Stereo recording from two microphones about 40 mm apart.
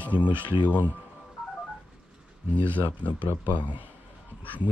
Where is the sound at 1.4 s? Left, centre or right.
Centre.